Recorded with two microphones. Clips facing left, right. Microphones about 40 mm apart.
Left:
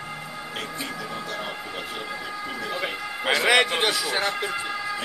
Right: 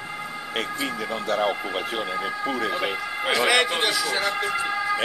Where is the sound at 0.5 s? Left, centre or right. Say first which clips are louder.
Right 6 dB; right.